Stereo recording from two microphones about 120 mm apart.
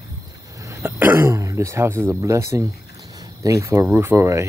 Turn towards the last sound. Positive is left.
turn(degrees=-25)  # may be behind; listen again after turning